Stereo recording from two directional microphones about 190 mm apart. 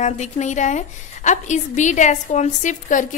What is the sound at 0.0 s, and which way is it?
A woman's voice, 40° left (ahead or behind).